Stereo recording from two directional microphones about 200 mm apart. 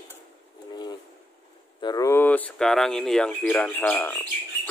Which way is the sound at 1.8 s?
15° left (ahead or behind).